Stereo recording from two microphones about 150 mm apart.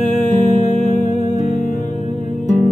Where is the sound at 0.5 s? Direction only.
50° left (ahead or behind).